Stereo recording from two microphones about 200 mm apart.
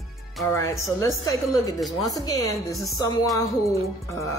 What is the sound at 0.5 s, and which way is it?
Speech, 15° left (ahead or behind).